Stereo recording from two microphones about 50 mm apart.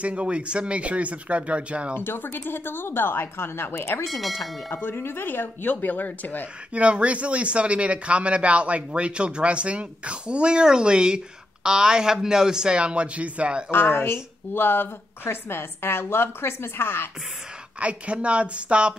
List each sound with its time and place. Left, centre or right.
0.0 s speech: right
2.0 s speech: left
4.2 s speech: centre
4.6 s speech: left
6.7 s speech: right
13.7 s speech: left
17.7 s speech: right